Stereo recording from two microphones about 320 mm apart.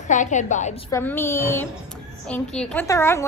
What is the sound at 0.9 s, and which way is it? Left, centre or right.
Speech, centre.